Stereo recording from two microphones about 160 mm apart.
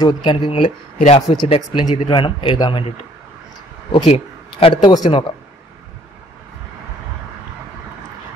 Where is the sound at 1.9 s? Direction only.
35° left (ahead or behind).